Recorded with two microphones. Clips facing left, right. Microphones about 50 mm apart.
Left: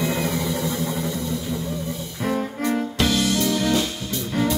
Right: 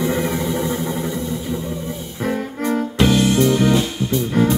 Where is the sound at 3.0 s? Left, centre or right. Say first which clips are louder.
Right 8 dB; right.